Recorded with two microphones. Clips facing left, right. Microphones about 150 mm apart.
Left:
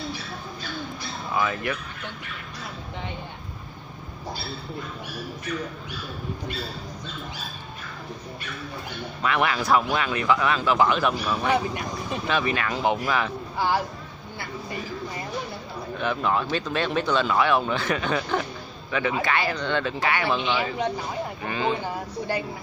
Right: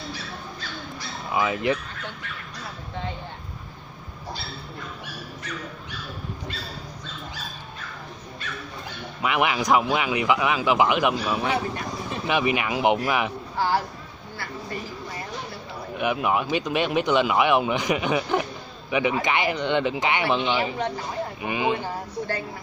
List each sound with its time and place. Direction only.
1.3 s speech: 15° right (ahead or behind)
9.2 s speech: 15° right (ahead or behind)
16.0 s speech: 15° right (ahead or behind)